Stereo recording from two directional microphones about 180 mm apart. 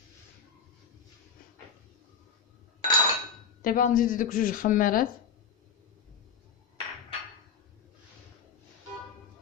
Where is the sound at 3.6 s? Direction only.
50° left (ahead or behind).